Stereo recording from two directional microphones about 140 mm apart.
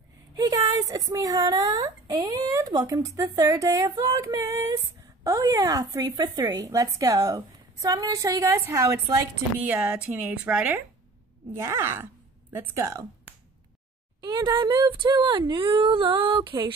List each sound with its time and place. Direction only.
0.4 s a woman's voice: 25° right (ahead or behind)
9.6 s speech: 10° right (ahead or behind)
11.5 s a woman's voice: 20° right (ahead or behind)
14.2 s speech: 30° right (ahead or behind)